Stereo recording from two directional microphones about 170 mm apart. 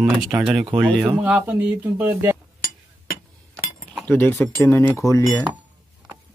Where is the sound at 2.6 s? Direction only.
55° left (ahead or behind).